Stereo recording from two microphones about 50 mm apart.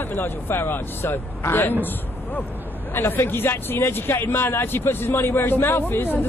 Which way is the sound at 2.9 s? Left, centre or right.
Left.